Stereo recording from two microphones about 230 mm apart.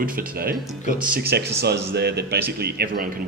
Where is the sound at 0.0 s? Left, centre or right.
Right.